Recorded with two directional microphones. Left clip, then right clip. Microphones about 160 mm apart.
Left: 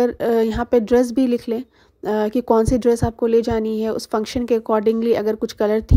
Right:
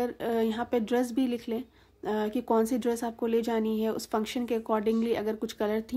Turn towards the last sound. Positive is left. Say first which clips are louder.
# left 11 dB
turn(degrees=35)  # may be behind; listen again after turning